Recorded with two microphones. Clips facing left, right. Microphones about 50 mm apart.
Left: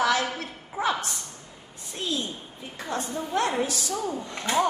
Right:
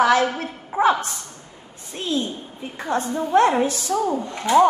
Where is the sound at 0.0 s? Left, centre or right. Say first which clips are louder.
Right 7 dB; right.